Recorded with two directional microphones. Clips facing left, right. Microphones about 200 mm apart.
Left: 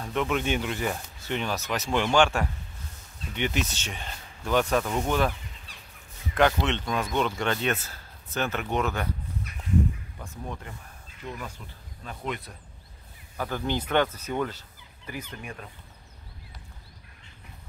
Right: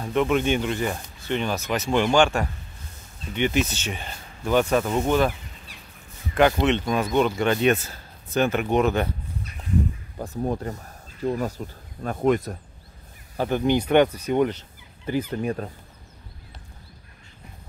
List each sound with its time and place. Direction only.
0.0 s speech: centre (ahead or behind)
6.3 s speech: 5° right (ahead or behind)
6.6 s speech: 15° right (ahead or behind)
7.2 s speech: 5° right (ahead or behind)
10.1 s speech: 40° right (ahead or behind)
13.4 s speech: 20° right (ahead or behind); by 15.7 s 40° right (ahead or behind)